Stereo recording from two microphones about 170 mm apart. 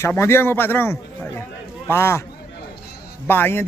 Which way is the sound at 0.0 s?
15° left (ahead or behind).